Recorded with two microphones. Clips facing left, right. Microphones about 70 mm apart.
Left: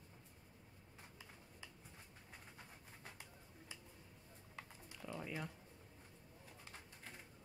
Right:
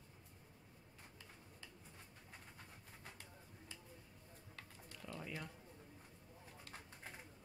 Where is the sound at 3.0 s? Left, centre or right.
Centre.